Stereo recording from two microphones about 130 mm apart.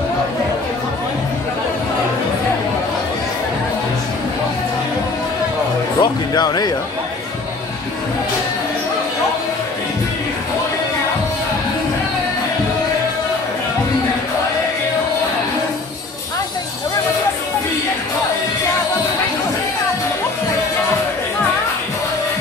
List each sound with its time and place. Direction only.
5.9 s music: 30° left (ahead or behind)